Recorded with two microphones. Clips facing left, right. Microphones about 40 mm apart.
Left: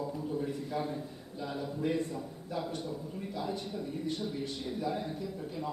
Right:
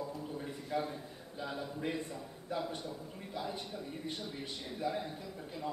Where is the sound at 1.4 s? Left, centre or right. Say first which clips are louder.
Left 4 dB; centre.